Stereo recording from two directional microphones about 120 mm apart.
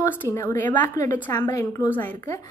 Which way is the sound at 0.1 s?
15° left (ahead or behind).